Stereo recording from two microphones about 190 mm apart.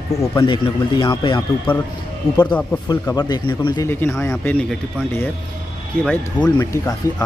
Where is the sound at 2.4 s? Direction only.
5° left (ahead or behind).